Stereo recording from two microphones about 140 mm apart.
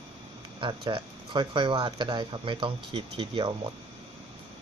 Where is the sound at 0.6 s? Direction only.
35° right (ahead or behind).